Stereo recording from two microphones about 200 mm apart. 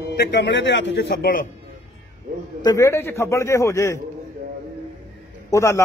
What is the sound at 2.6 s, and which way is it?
A man's voice, 15° left (ahead or behind).